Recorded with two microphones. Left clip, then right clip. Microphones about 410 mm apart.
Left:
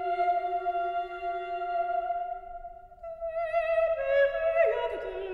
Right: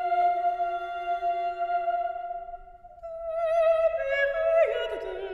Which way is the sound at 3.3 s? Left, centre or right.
Right.